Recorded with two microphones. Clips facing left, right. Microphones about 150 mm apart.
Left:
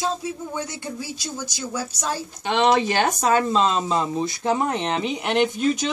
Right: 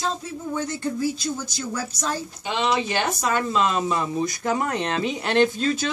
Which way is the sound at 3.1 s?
35° left (ahead or behind).